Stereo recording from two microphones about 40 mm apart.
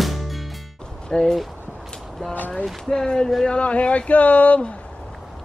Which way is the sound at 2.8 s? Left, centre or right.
Centre.